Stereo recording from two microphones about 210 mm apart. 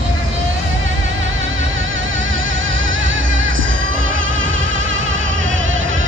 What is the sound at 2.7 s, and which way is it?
Music, 65° right (ahead or behind).